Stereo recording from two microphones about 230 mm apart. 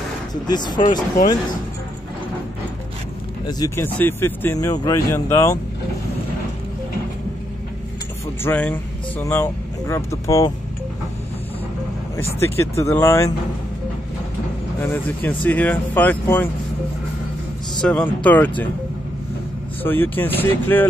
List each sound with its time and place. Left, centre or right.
0.3 s speech: centre
1.1 s speech: left
3.4 s speech: centre
8.4 s speech: centre
12.4 s speech: centre
14.8 s speech: centre
17.8 s speech: centre
19.8 s speech: centre